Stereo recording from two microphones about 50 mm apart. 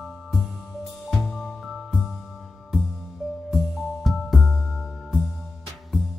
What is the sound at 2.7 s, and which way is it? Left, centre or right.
Music, centre.